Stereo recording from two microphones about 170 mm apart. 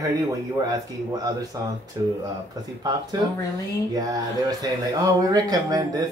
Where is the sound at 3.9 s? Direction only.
20° right (ahead or behind).